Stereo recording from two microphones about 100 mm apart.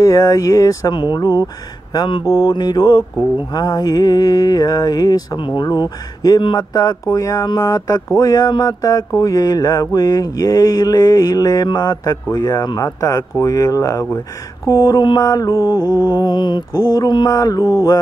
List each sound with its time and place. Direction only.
0.0 s mantra: 35° left (ahead or behind)
17.3 s mantra: 35° left (ahead or behind)